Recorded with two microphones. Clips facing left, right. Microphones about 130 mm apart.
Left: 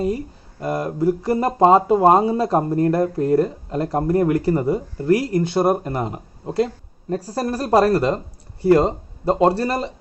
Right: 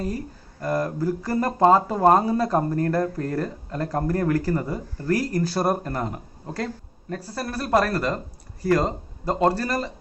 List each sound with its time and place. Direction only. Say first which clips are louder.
0.0 s speech: left 6 dB; 20° left (ahead or behind)